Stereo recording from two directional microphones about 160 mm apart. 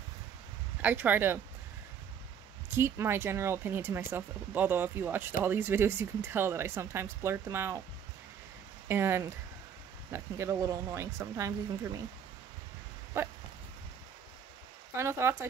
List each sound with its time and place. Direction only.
0.8 s speech: 10° right (ahead or behind)
2.7 s speech: 15° right (ahead or behind)
8.8 s speech: 15° right (ahead or behind)
13.2 s speech: 15° right (ahead or behind)
15.0 s speech: 15° right (ahead or behind)